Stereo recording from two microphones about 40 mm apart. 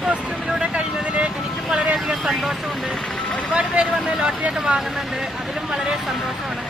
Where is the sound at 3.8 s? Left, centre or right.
Centre.